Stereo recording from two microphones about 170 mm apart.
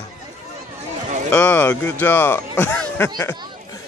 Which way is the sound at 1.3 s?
5° left (ahead or behind).